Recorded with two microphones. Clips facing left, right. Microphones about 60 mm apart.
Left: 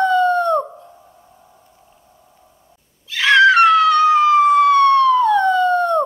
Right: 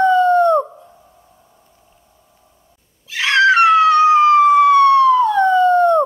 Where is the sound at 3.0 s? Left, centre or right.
Centre.